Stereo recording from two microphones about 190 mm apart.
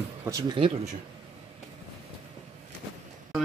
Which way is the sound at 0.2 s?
15° right (ahead or behind).